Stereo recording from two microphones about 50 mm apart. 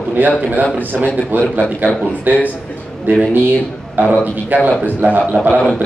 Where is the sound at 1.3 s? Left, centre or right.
Right.